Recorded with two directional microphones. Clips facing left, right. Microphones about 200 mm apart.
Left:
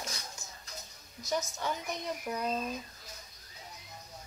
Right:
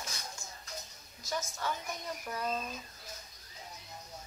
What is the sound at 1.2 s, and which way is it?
Speech, 20° left (ahead or behind).